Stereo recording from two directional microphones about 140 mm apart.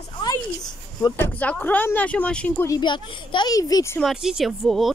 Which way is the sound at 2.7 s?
35° left (ahead or behind).